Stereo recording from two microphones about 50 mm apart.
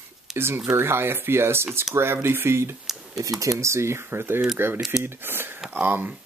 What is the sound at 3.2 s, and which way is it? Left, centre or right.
Speech, right.